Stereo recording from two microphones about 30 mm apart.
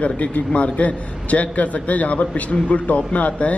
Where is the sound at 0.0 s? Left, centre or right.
Left.